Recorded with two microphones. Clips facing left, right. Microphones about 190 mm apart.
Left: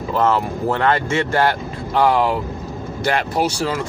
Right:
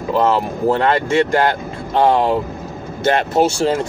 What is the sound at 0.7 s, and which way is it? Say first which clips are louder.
Speech: right 2 dB; 30° right (ahead or behind).